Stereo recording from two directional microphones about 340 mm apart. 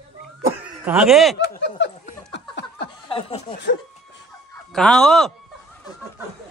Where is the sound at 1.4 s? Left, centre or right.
Left.